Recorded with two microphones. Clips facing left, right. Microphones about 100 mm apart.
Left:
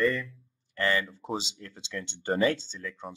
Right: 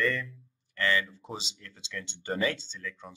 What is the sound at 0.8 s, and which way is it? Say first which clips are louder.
Speech: left 1 dB; 40° left (ahead or behind).